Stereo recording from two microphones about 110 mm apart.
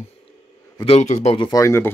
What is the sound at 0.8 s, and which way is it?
Speech, 80° left.